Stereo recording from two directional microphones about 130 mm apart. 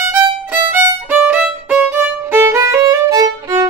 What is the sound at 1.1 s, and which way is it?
Violin, 10° right (ahead or behind).